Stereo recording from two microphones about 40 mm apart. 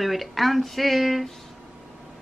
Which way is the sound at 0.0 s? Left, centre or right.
Centre.